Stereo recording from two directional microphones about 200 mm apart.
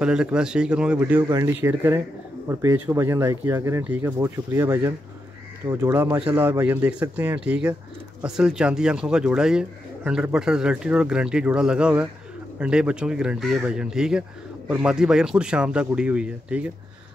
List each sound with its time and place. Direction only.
0.0 s speech: 5° right (ahead or behind)